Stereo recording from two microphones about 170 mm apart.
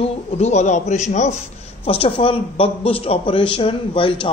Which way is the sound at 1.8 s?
35° left (ahead or behind).